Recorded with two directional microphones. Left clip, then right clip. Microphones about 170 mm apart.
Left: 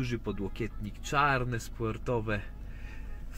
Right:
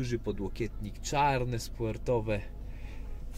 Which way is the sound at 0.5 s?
20° left (ahead or behind).